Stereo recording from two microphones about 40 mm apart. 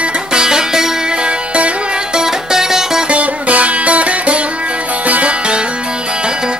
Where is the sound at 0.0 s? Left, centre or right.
Right.